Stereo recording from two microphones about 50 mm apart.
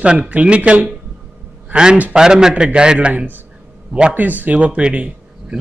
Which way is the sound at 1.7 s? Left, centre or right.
Centre.